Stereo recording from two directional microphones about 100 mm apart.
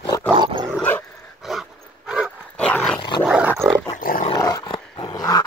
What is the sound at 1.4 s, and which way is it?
Dog, centre (ahead or behind).